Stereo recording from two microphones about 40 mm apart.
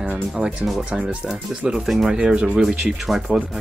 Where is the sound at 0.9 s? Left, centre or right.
Centre.